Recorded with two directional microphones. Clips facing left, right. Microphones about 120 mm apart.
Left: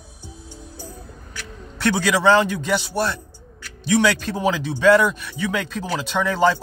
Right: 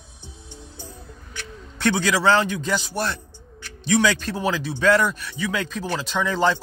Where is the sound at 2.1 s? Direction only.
10° left (ahead or behind).